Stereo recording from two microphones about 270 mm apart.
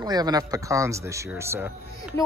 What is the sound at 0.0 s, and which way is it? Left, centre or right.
Speech, centre.